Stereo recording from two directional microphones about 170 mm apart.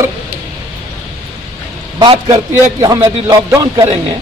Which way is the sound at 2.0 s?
25° right (ahead or behind).